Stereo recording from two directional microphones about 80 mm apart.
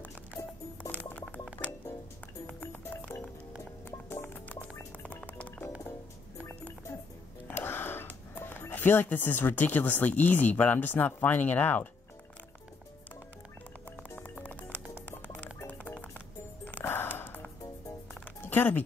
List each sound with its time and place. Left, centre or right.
0.4 s music: left
2.6 s music: left
4.3 s music: left
6.9 s music: left
7.5 s speech: left
14.4 s music: centre